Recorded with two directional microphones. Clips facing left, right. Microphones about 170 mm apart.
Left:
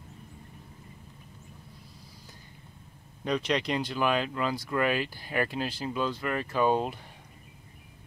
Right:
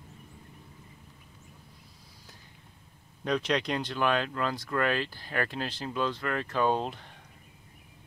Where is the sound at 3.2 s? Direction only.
Centre (ahead or behind).